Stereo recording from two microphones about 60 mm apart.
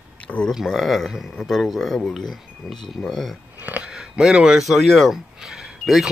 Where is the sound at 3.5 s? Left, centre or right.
Right.